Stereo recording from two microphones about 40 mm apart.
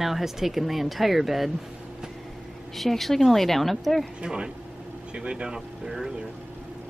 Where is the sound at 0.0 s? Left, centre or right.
Centre.